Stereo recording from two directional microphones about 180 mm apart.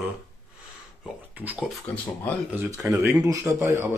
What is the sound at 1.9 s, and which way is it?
Speech, 10° left (ahead or behind).